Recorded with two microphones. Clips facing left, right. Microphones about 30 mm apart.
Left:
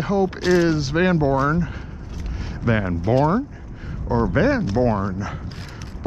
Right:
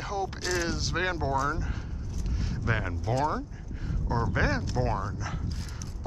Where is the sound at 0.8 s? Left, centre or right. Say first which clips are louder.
Left 10 dB; centre.